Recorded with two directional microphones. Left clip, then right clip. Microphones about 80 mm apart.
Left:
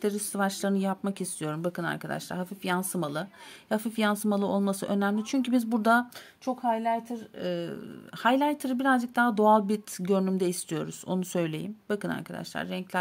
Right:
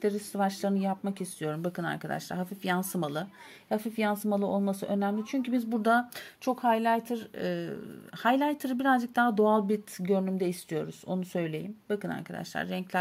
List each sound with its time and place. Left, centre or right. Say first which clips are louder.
0.0 s speech: even; left
1.4 s speech: left 1 dB; left
3.6 s speech: left 2 dB; left
5.7 s speech: left 2 dB; left
6.4 s a woman's voice: right 1 dB; right
7.6 s speech: left 1 dB; centre
9.4 s speech: left 5 dB; left
9.7 s speech: left 1 dB; left
12.3 s speech: even; centre